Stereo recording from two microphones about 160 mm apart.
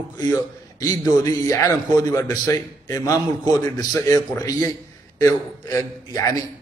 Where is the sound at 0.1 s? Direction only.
25° left (ahead or behind).